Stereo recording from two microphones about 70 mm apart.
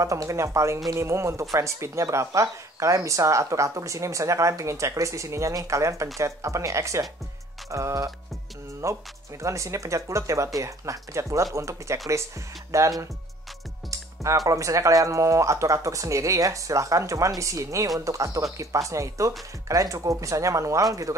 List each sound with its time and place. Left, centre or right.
0.0 s speech: right